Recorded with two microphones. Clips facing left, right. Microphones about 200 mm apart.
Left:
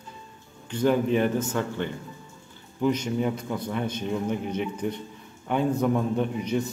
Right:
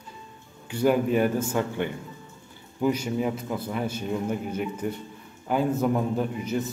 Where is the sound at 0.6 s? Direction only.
10° right (ahead or behind).